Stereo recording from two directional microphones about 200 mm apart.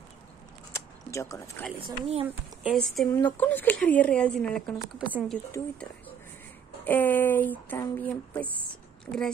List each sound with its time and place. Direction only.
0.7 s a sound: 15° left (ahead or behind)
1.8 s speech: 30° right (ahead or behind)
2.6 s a woman's voice: centre (ahead or behind)
5.5 s a woman's voice: 15° left (ahead or behind)
6.8 s a woman's voice: 10° left (ahead or behind)